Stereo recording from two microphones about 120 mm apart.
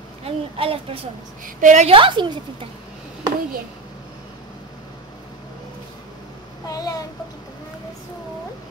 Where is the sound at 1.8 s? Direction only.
45° right (ahead or behind).